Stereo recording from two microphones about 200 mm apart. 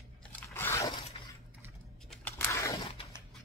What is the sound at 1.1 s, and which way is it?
Dishes, 25° left (ahead or behind).